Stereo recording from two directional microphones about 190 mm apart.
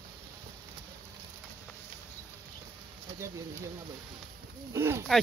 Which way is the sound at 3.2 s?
15° right (ahead or behind).